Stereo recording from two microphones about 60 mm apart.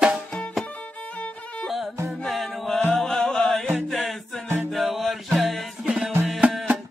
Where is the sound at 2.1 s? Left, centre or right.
Centre.